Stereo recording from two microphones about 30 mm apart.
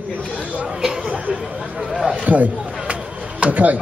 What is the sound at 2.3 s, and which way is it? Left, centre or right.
Speech, right.